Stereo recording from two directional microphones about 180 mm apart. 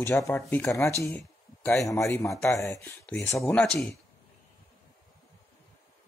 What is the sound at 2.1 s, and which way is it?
Speech, 15° left (ahead or behind).